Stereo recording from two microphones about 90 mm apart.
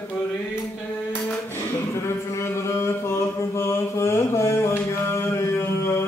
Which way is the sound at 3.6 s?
30° left (ahead or behind).